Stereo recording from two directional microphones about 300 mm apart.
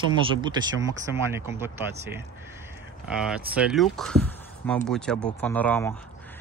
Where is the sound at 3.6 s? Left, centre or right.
Centre.